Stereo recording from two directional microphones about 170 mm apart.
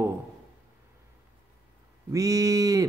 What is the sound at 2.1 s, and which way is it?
Speech, 20° right (ahead or behind).